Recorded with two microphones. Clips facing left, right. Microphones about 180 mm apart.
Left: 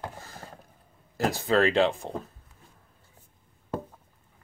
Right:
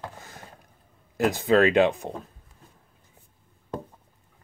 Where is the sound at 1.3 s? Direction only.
15° right (ahead or behind).